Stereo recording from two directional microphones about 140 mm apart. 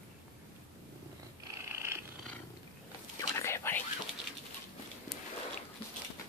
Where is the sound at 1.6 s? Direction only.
20° right (ahead or behind).